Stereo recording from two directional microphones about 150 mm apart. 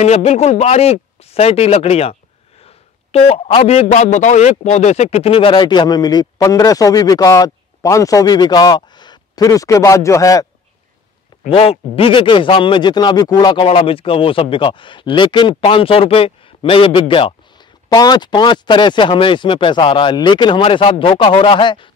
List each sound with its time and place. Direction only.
0.0 s a man's voice: 45° left (ahead or behind); by 10.4 s 20° left (ahead or behind)
11.4 s speech: 40° left (ahead or behind)